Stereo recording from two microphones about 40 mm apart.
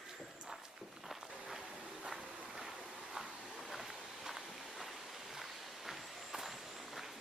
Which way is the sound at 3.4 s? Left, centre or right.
Centre.